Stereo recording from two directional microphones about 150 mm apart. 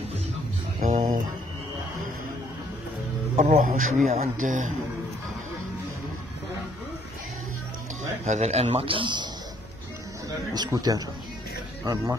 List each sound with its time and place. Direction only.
0.7 s a sound: 60° right (ahead or behind)
3.3 s speech: 60° right (ahead or behind)
8.3 s speech: 45° right (ahead or behind); by 9.3 s 30° right (ahead or behind)
10.5 s speech: 25° right (ahead or behind)